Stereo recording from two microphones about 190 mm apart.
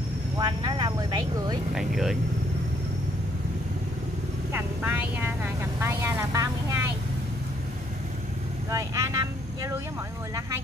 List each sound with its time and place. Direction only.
0.4 s vehicle: 20° right (ahead or behind)
1.8 s speech: centre (ahead or behind)
4.5 s vehicle: 10° right (ahead or behind)
8.6 s vehicle: 15° right (ahead or behind)